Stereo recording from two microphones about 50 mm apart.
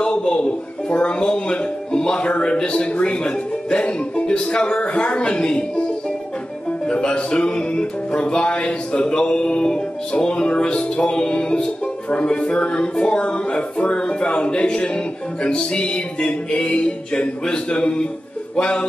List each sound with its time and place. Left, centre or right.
0.0 s music: centre
6.9 s music: centre